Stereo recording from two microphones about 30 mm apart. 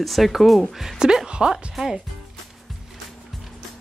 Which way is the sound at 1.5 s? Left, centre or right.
Centre.